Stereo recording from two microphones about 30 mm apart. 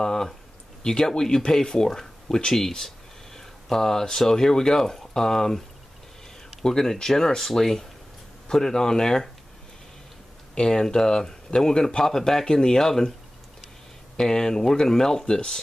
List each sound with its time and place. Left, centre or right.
0.0 s a sound: centre
0.8 s speech: left
6.6 s speech: centre
10.6 s speech: left
14.1 s speech: centre